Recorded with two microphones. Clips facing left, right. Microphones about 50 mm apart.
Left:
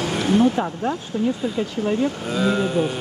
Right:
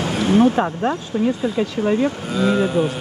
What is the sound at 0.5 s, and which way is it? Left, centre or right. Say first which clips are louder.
Speech: right 4 dB; right.